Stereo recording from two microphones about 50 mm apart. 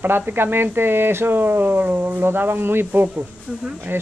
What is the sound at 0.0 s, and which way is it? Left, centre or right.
Speech, right.